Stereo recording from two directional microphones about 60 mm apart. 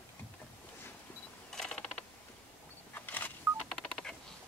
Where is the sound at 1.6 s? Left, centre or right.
Centre.